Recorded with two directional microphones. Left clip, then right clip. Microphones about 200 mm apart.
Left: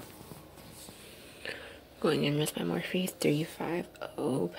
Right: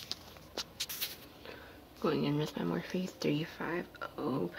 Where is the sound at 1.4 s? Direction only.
5° left (ahead or behind).